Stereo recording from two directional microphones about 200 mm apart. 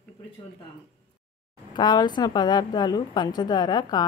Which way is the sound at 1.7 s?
20° left (ahead or behind).